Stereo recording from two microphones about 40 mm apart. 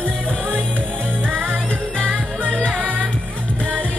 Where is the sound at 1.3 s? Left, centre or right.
Right.